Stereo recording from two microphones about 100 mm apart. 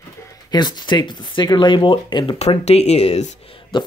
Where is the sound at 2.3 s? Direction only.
90° left; by 3.8 s 65° left (ahead or behind).